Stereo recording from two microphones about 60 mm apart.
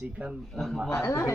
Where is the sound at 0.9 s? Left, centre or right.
Left.